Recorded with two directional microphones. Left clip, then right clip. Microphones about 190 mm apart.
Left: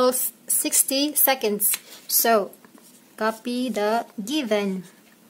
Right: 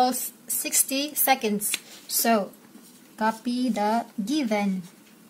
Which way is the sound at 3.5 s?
45° left (ahead or behind).